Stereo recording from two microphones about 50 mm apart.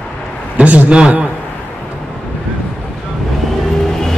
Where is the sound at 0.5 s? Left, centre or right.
Right.